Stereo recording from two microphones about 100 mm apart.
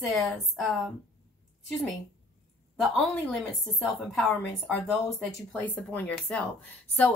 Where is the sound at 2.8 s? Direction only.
Centre (ahead or behind).